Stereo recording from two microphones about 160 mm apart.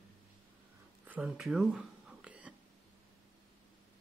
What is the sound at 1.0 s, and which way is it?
Whispering, 5° right (ahead or behind).